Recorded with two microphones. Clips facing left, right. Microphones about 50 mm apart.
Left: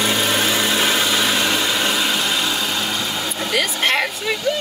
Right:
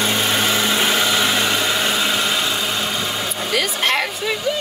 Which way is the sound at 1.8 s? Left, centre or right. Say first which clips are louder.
Even; centre.